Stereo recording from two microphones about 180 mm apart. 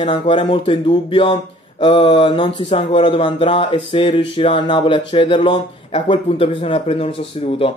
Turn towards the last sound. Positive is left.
turn(degrees=30)  # may be behind; listen again after turning